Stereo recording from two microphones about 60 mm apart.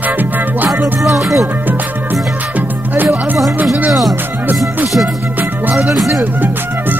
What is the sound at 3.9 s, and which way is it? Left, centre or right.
Music, centre.